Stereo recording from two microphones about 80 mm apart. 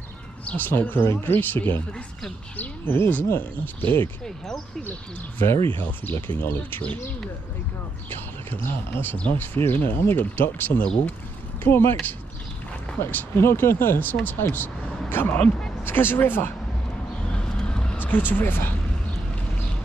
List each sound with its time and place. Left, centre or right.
0.5 s speech: left
5.9 s speech: left
8.5 s speech: left
17.3 s vehicle: centre
17.9 s vehicle: left
18.3 s speech: left